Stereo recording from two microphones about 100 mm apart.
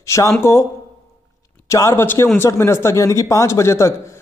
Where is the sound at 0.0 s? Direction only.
30° left (ahead or behind).